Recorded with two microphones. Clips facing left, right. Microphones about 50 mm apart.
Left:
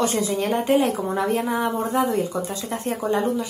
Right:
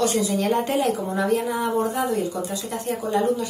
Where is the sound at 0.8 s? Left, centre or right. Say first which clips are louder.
Left 1 dB; left.